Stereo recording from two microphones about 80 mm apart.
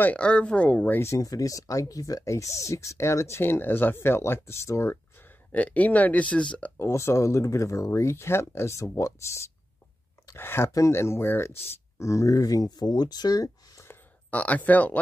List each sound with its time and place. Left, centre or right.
0.0 s speech: centre
1.0 s speech: left; by 6.7 s centre
6.8 s speech: left
10.3 s speech: left
14.3 s speech: centre